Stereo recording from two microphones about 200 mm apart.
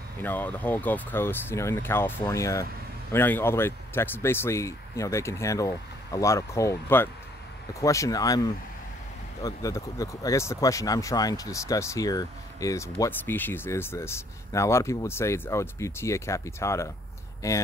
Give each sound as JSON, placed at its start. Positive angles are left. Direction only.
{"t": 0.2, "sound": "speech", "side_deg": 10}